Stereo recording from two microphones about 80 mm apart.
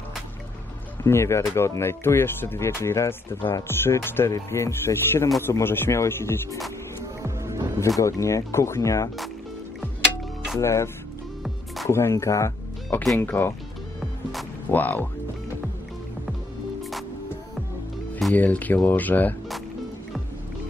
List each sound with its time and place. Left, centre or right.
1.0 s speech: left
7.2 s music: right
8.0 s speech: left
10.6 s speech: left
11.4 s music: centre
11.9 s speech: left
13.2 s speech: left
14.7 s speech: left
18.3 s speech: centre